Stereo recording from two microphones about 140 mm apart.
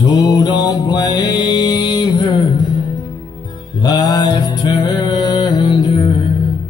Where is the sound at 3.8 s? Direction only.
30° left (ahead or behind).